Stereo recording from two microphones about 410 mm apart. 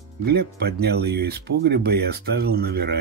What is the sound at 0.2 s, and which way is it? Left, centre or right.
Speech, right.